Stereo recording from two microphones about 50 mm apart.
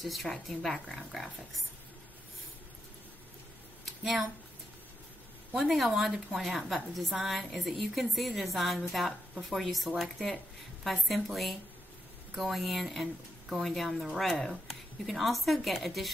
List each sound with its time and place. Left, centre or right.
0.0 s a woman's voice: centre
3.8 s a sound: centre
5.7 s a woman's voice: centre